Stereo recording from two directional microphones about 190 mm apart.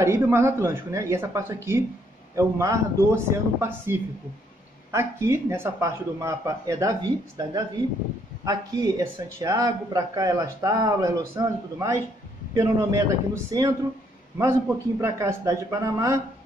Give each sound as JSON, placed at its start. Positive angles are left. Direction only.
{"t": 0.0, "sound": "a man's voice", "side_deg": -15}
{"t": 15.0, "sound": "a man's voice", "side_deg": -15}